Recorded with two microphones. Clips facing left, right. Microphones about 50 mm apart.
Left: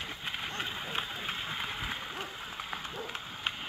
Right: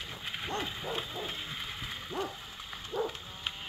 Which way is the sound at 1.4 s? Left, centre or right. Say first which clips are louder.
Left 4 dB; left.